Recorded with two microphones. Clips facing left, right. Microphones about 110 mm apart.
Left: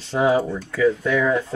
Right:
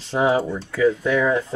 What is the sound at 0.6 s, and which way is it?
Speech, 10° right (ahead or behind).